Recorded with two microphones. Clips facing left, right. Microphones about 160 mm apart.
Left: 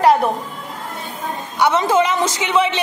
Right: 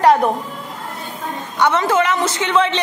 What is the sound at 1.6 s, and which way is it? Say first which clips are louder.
A woman's voice: left 1 dB; 15° left (ahead or behind).